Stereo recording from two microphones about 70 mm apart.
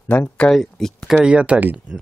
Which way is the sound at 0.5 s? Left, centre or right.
Centre.